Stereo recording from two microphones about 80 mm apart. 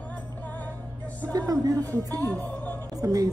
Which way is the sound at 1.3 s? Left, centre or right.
Right.